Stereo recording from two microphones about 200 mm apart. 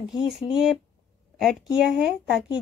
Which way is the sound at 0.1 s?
Centre (ahead or behind).